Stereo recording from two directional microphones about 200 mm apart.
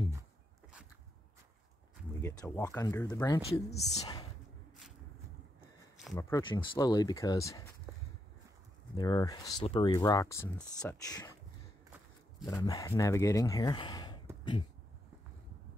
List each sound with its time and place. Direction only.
2.2 s speech: 15° left (ahead or behind)
3.4 s speech: 30° left (ahead or behind)
6.1 s speech: 15° left (ahead or behind)
8.9 s speech: 20° left (ahead or behind)
12.4 s speech: 15° left (ahead or behind)